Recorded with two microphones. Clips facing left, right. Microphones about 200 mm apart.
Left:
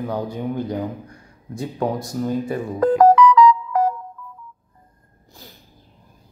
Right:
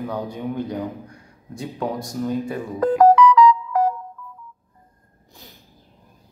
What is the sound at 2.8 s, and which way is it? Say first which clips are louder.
Music: left 1 dB; 45° left (ahead or behind).